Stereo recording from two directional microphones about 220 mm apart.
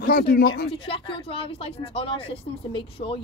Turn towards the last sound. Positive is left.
turn(degrees=25)  # may be behind; listen again after turning